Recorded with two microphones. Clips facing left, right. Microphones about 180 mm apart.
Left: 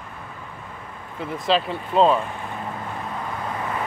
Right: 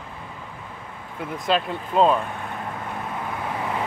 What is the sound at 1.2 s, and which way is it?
Speech, centre (ahead or behind).